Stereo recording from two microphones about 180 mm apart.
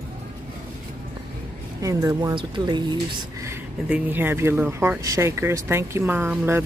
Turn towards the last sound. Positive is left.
turn(degrees=-10)  # may be behind; listen again after turning